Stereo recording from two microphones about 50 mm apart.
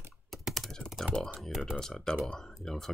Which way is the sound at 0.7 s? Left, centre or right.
Centre.